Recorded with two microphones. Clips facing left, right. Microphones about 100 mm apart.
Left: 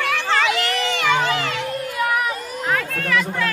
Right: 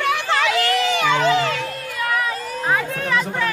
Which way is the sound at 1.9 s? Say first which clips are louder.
Left 1 dB; 15° left (ahead or behind).